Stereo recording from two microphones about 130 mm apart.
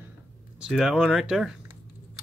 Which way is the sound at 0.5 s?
5° right (ahead or behind).